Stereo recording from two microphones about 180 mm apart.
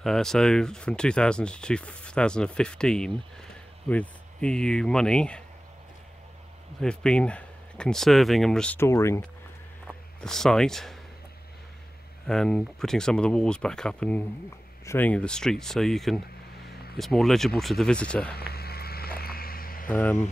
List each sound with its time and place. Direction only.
0.0 s speech: centre (ahead or behind)
6.8 s speech: 5° left (ahead or behind)
9.8 s speech: 5° left (ahead or behind)
12.3 s speech: 5° left (ahead or behind)
16.6 s a sound: 60° left (ahead or behind)
17.0 s speech: centre (ahead or behind)
18.3 s cricket: 60° left (ahead or behind)
19.9 s speech: 10° left (ahead or behind)